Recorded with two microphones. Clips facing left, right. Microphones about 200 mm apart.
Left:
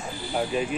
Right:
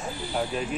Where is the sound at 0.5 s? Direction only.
Centre (ahead or behind).